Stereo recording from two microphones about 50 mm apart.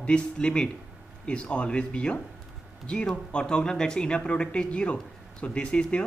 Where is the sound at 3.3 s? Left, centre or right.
Centre.